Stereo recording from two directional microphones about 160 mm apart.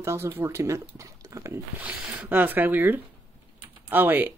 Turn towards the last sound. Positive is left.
turn(degrees=-10)  # may be behind; listen again after turning